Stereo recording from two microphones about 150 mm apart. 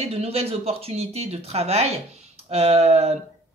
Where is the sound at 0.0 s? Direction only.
45° right (ahead or behind).